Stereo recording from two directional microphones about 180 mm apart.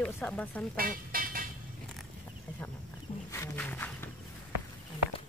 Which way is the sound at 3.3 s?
10° left (ahead or behind).